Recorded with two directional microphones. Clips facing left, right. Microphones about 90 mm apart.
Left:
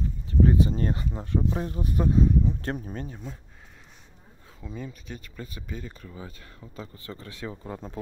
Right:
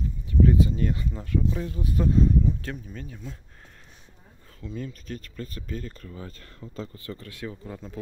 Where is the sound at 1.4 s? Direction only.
35° left (ahead or behind).